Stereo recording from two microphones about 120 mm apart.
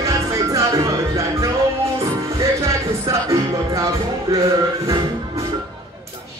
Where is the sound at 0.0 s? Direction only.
25° right (ahead or behind).